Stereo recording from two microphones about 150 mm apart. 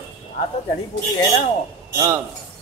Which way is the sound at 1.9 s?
20° right (ahead or behind).